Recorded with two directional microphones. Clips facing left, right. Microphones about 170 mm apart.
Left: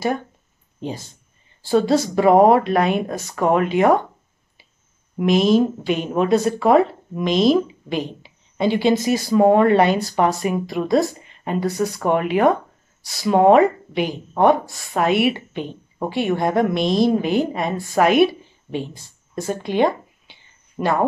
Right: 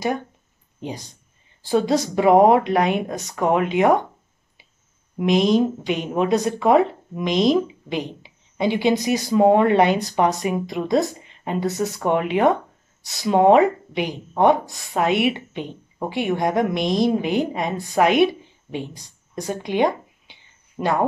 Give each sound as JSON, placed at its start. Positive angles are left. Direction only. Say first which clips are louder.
{"t": 1.6, "sound": "speech", "louder": "left 2 dB", "side_deg": -15}
{"t": 5.2, "sound": "a woman's voice", "louder": "left 2 dB", "side_deg": -20}